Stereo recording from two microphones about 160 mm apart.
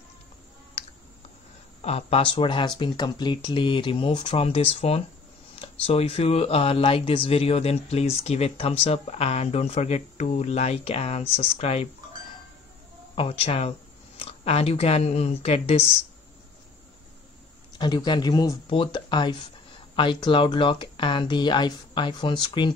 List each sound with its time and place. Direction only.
1.8 s speech: 40° left (ahead or behind)
13.1 s speech: 35° left (ahead or behind)
17.7 s speech: 25° left (ahead or behind)